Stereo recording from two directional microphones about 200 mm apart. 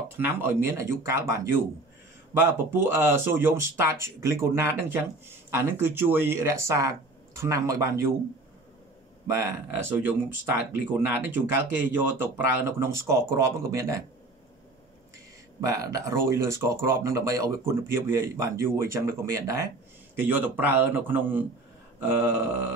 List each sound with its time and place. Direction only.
0.2 s speech: 10° right (ahead or behind)
9.3 s speech: 15° right (ahead or behind)
15.6 s speech: 15° right (ahead or behind)